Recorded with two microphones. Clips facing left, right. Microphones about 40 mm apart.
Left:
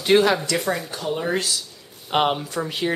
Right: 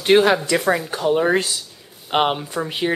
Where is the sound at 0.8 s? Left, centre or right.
Right.